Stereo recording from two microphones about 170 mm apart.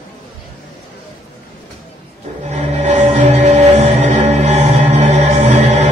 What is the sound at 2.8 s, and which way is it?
Music, 45° right (ahead or behind).